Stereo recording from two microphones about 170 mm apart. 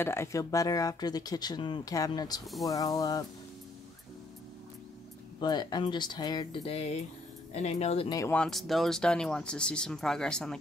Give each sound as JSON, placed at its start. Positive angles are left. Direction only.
{"t": 0.0, "sound": "speech", "side_deg": 15}
{"t": 5.4, "sound": "speech", "side_deg": 25}
{"t": 8.1, "sound": "speech", "side_deg": 20}
{"t": 8.4, "sound": "speech", "side_deg": 0}